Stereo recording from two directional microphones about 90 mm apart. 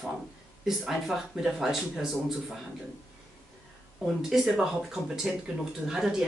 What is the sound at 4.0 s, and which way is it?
Speech, 5° right (ahead or behind).